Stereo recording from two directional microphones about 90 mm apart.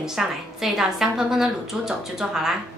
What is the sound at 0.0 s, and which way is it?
A woman's voice, 5° right (ahead or behind).